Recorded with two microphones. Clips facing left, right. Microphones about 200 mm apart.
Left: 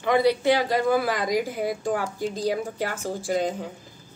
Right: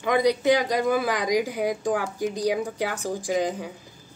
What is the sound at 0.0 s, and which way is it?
A woman's voice, 15° right (ahead or behind).